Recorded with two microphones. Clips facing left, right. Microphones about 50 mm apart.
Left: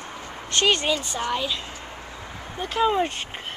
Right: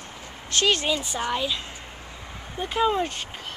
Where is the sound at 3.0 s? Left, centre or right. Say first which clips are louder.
Left 3 dB; centre.